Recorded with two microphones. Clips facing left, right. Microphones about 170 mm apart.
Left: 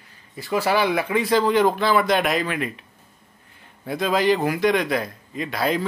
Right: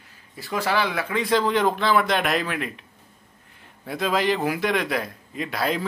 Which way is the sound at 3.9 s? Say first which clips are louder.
Left 3 dB; centre (ahead or behind).